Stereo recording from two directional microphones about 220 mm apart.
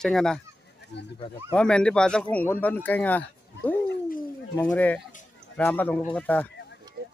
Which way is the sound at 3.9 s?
40° left (ahead or behind).